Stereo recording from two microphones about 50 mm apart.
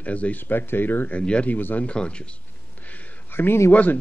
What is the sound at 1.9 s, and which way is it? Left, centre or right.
Speech, left.